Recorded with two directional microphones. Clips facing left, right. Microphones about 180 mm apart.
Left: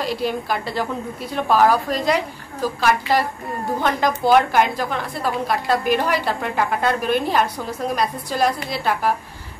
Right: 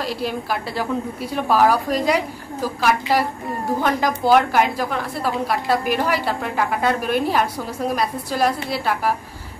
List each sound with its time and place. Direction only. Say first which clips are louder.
0.0 s a woman's voice: left 2 dB; 5° right (ahead or behind)